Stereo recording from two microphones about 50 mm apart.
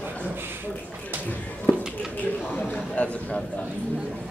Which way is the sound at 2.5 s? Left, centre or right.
Left.